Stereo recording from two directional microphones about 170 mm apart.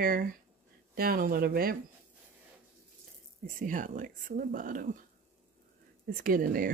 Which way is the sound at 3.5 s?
50° right (ahead or behind).